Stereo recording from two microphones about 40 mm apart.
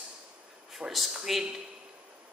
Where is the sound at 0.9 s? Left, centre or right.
Centre.